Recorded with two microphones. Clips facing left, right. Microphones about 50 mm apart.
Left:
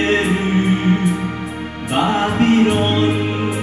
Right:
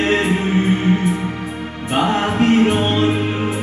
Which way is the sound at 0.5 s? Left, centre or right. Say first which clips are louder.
Even; centre.